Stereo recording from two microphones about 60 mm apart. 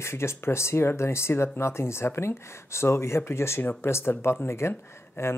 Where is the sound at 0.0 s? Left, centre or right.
Left.